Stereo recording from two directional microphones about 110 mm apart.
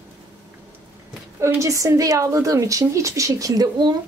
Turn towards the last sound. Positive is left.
turn(degrees=-35)  # may be behind; listen again after turning